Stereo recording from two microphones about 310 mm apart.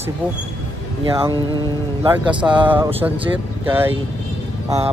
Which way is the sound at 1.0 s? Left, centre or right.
Centre.